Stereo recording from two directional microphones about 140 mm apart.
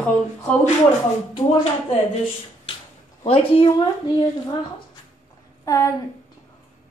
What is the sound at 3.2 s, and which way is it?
Speech, 45° left (ahead or behind).